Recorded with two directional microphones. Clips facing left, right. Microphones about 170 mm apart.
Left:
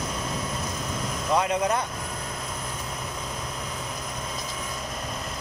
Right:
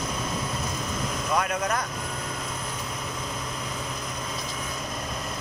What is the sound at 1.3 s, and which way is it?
Speech, 20° left (ahead or behind).